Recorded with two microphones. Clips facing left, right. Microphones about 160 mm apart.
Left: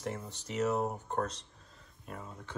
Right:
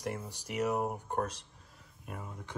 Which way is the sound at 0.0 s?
10° right (ahead or behind).